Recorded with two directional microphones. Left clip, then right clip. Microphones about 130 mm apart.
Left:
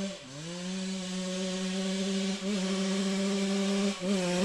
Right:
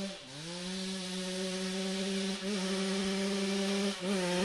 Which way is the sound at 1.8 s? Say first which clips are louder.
Left 2 dB; 35° right (ahead or behind).